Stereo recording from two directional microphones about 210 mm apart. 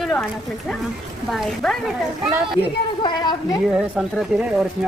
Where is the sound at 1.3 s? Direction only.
Centre (ahead or behind).